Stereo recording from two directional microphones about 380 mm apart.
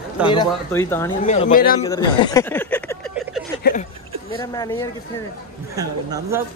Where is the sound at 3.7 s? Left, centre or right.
Left.